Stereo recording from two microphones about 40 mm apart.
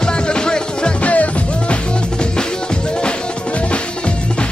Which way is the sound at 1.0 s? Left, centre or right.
Left.